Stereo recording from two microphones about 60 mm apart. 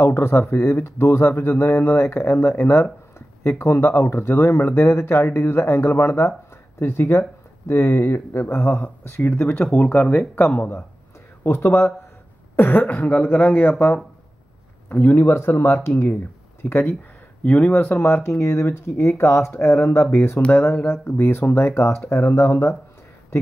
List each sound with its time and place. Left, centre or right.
0.0 s speech: left
8.7 s speech: left
9.1 s speech: left
9.8 s speech: left
11.4 s speech: left
17.4 s speech: left
19.5 s speech: left